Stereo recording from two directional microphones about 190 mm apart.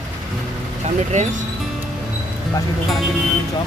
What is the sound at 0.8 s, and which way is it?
Speech, 40° right (ahead or behind).